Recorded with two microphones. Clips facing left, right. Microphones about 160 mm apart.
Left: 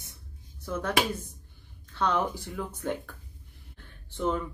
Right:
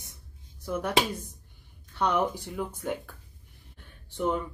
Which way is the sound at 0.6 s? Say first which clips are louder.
Right 1 dB; 15° right (ahead or behind).